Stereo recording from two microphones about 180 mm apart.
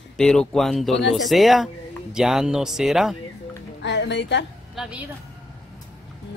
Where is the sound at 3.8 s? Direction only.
75° left (ahead or behind).